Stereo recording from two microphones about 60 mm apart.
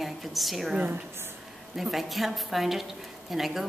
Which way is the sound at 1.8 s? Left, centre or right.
Centre.